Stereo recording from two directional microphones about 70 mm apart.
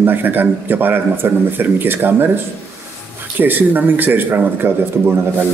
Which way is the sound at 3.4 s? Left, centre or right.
Right.